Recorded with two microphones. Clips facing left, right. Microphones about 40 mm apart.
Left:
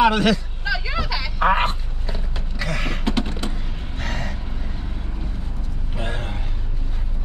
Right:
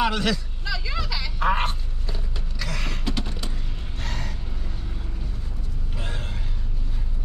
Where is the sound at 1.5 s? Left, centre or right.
Left.